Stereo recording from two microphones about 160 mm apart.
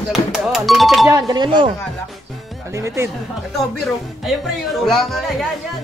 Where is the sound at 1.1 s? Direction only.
25° right (ahead or behind).